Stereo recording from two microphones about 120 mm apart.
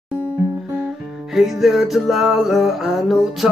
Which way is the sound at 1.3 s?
Centre (ahead or behind).